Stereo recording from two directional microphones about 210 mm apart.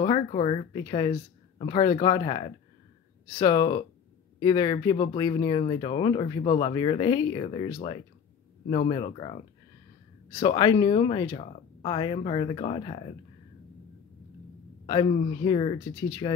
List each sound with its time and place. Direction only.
0.0 s speech: 25° left (ahead or behind)
14.9 s speech: 25° left (ahead or behind)